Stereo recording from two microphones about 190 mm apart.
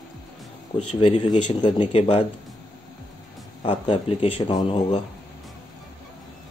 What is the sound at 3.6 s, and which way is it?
Speech, 30° left (ahead or behind).